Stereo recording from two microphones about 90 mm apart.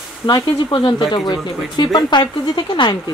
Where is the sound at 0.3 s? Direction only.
60° left (ahead or behind).